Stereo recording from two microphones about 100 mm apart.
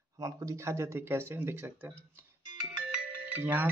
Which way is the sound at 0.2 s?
35° right (ahead or behind).